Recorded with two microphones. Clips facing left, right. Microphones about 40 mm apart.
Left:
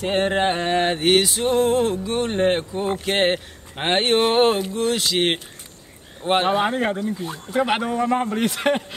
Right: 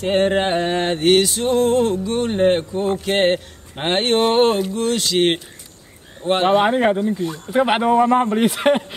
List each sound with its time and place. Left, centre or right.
0.0 s music: centre
6.4 s speech: centre